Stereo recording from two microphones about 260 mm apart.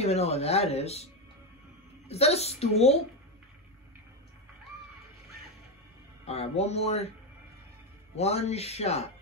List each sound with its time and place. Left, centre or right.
0.0 s speech: left
2.0 s speech: left
6.2 s speech: left
8.2 s speech: left